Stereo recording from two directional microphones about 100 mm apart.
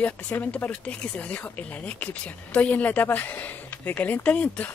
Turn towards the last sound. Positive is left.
turn(degrees=15)  # may be behind; listen again after turning